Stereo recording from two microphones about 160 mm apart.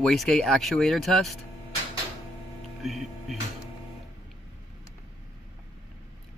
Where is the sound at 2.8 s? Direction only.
Centre (ahead or behind).